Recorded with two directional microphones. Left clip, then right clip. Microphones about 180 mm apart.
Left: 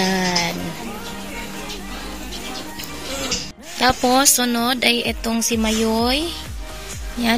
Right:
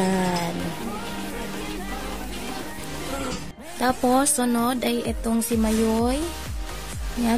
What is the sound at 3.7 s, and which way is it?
A woman's voice, 5° right (ahead or behind).